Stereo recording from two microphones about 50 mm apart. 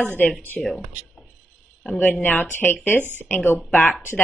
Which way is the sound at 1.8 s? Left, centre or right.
Centre.